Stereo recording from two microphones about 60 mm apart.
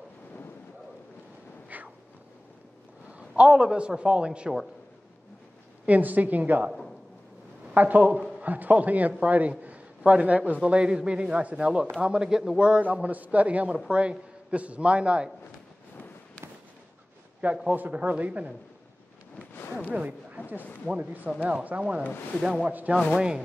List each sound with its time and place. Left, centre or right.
1.7 s a sound: right
3.1 s a man's voice: centre
5.9 s a man's voice: right
7.7 s a man's voice: right
17.6 s a man's voice: right
19.5 s a sound: left
19.9 s a man's voice: right
23.1 s speech: centre